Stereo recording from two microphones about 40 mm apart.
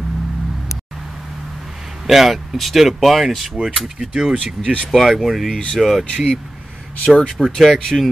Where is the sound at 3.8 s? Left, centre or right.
Centre.